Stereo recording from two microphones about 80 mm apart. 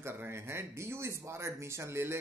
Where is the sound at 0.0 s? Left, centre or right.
Right.